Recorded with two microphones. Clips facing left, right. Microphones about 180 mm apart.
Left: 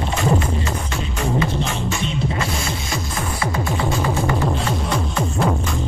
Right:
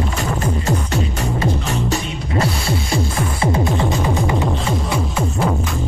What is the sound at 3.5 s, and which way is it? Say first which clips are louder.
Music: right 1 dB; 15° right (ahead or behind).